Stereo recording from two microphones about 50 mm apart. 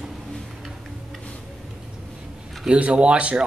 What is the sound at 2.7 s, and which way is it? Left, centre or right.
Speech, right.